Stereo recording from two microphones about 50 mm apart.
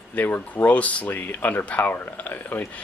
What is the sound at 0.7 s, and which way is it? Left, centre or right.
Speech, left.